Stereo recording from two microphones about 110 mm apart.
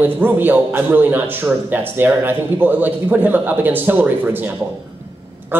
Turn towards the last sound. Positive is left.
turn(degrees=-15)  # may be behind; listen again after turning